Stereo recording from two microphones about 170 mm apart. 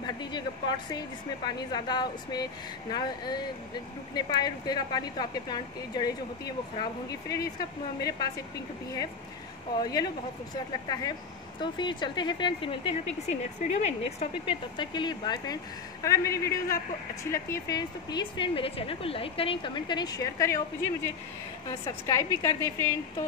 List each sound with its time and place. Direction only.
0.0 s speech: 25° left (ahead or behind)
10.5 s speech: 25° left (ahead or behind)